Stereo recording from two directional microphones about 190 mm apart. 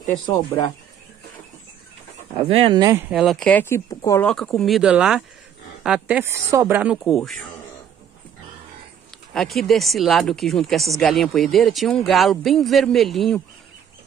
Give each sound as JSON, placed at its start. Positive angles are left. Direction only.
{"t": 2.3, "sound": "speech", "side_deg": -30}
{"t": 3.1, "sound": "speech", "side_deg": 0}
{"t": 9.3, "sound": "speech", "side_deg": 0}